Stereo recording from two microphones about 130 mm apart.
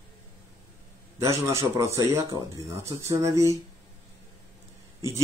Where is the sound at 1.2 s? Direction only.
25° right (ahead or behind).